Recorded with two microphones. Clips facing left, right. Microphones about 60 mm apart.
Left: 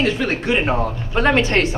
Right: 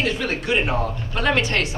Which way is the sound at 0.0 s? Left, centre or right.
Left.